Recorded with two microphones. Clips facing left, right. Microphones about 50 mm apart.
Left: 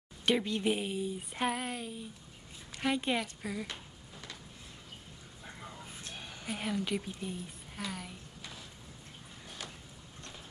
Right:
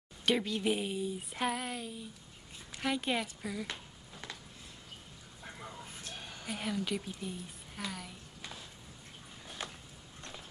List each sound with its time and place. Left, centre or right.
0.2 s a woman's voice: centre
6.4 s a woman's voice: centre
9.6 s boat: right